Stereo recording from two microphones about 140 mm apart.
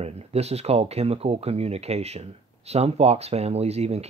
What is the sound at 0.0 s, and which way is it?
Speech, 50° right (ahead or behind).